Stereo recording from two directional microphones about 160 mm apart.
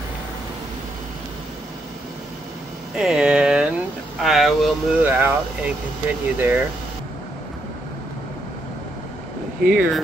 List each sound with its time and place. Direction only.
3.0 s a sound: 5° right (ahead or behind)
4.2 s vehicle: centre (ahead or behind)
5.0 s speech: 10° right (ahead or behind)
9.6 s speech: 70° right (ahead or behind)